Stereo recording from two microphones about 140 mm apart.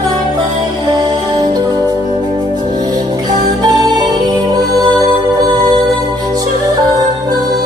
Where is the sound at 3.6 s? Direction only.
30° right (ahead or behind).